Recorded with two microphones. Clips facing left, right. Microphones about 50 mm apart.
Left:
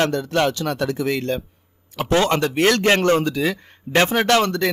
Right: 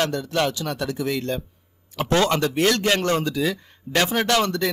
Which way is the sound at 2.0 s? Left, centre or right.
Left.